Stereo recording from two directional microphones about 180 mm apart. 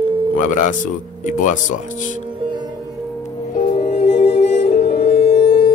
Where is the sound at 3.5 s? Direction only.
40° left (ahead or behind).